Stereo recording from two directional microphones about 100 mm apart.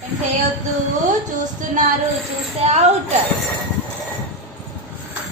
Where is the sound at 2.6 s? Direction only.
90° right.